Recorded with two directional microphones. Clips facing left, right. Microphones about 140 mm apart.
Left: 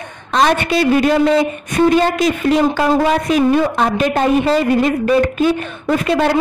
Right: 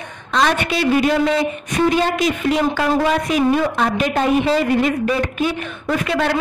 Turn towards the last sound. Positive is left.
turn(degrees=35)  # may be behind; listen again after turning